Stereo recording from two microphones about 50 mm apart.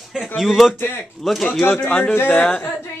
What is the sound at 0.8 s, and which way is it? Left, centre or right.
Speech, left.